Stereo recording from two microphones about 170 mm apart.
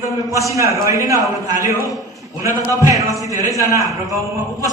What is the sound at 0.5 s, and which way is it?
Speech, 20° right (ahead or behind).